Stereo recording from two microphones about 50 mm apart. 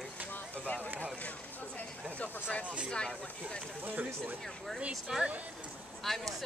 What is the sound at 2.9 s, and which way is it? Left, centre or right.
Speech, centre.